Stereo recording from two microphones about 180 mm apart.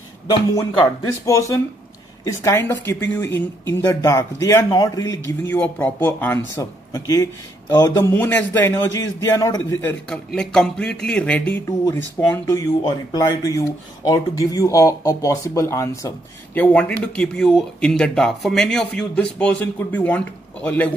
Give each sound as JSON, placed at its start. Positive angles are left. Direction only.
{"t": 0.3, "sound": "speech", "side_deg": 20}